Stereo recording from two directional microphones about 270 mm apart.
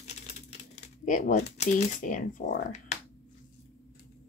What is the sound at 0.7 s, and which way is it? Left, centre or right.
Speech, left.